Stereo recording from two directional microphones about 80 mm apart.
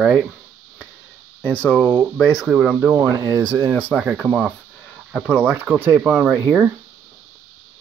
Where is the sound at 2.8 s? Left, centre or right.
Right.